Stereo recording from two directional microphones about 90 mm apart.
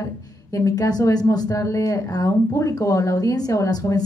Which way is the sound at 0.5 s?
40° left (ahead or behind).